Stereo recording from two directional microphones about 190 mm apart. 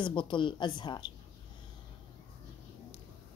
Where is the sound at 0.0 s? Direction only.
25° left (ahead or behind).